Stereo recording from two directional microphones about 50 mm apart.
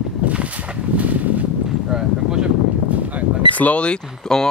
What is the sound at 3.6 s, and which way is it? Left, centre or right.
Speech, left.